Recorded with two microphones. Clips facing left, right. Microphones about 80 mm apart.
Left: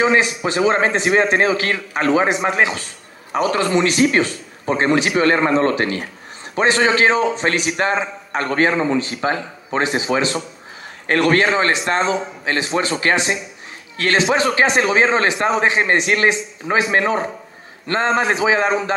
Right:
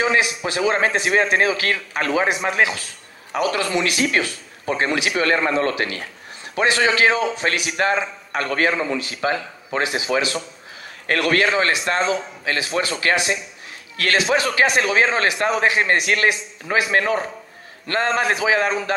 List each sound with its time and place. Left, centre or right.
0.0 s a man's voice: left